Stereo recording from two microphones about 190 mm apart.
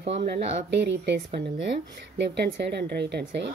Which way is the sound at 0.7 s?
65° right (ahead or behind).